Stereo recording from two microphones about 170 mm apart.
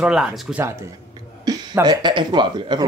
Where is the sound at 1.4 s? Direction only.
20° right (ahead or behind).